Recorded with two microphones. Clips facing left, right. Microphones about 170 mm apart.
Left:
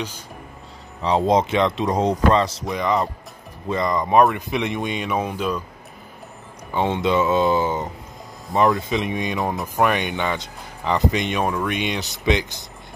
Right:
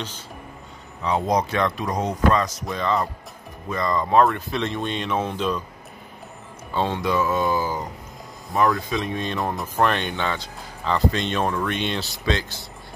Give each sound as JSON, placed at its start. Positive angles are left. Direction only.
{"t": 1.0, "sound": "speech", "side_deg": 30}
{"t": 2.7, "sound": "speech", "side_deg": 15}
{"t": 6.7, "sound": "speech", "side_deg": 20}
{"t": 9.4, "sound": "speech", "side_deg": 0}
{"t": 9.8, "sound": "speech", "side_deg": 10}